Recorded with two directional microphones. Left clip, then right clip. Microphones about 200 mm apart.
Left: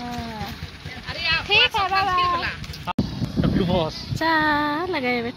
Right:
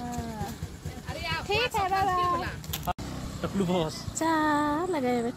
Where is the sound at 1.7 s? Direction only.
Centre (ahead or behind).